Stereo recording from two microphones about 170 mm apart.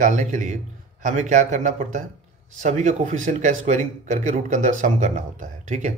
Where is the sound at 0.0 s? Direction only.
45° right (ahead or behind).